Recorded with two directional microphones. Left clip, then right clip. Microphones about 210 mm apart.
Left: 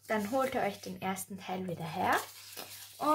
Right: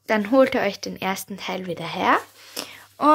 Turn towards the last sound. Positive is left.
turn(degrees=-45)  # may be behind; listen again after turning